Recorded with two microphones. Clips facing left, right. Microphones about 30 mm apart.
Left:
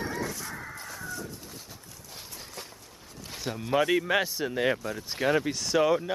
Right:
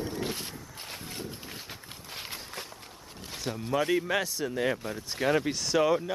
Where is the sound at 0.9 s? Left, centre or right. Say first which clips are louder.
Even; right.